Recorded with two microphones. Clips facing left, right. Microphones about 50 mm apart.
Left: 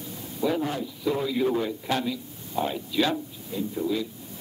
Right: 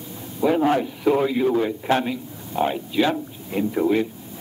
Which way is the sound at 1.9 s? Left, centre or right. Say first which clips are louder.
Right 6 dB; right.